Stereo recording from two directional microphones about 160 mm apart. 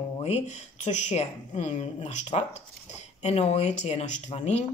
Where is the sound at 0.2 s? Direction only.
45° left (ahead or behind).